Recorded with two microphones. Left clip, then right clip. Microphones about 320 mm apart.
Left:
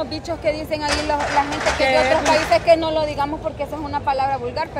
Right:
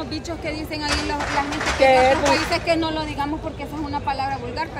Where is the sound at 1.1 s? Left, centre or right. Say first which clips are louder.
Left 4 dB; left.